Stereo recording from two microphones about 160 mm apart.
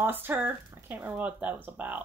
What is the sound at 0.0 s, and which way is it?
Speech, 15° right (ahead or behind).